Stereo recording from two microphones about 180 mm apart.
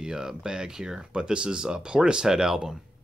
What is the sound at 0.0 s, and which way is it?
Speech, 5° right (ahead or behind).